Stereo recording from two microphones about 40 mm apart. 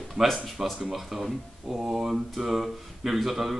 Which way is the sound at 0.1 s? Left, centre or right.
Centre.